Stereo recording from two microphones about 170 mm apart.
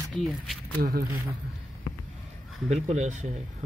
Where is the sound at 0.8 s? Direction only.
65° right (ahead or behind).